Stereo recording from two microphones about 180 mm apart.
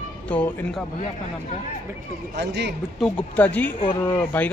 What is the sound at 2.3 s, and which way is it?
Speech, 70° right (ahead or behind).